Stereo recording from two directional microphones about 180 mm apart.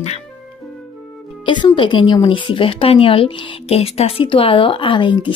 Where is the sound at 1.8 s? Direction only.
25° left (ahead or behind).